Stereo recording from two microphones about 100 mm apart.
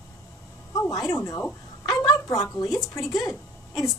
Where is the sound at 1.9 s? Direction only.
40° left (ahead or behind).